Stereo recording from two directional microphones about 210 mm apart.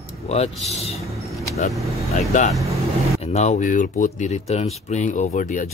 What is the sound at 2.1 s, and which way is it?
Speech, 35° left (ahead or behind).